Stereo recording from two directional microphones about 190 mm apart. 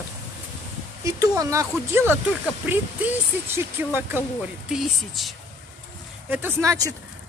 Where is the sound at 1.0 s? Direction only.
15° right (ahead or behind).